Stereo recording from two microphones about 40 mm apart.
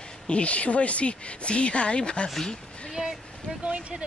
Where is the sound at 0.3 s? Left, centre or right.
Left.